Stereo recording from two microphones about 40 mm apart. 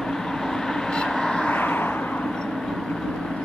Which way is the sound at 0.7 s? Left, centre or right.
Centre.